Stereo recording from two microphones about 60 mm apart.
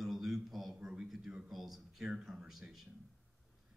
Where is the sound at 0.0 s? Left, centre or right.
Centre.